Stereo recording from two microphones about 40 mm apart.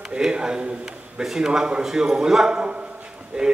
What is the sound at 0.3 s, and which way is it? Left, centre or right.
A man's voice, right.